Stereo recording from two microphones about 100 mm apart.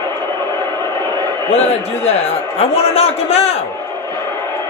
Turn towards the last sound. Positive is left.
turn(degrees=90)